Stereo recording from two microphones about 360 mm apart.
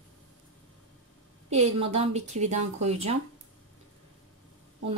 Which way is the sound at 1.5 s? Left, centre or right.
Centre.